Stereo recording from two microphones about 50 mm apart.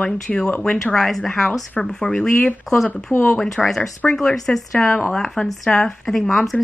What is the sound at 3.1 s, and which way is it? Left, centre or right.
Speech, left.